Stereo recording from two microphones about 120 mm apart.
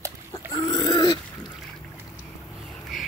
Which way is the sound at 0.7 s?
35° left (ahead or behind).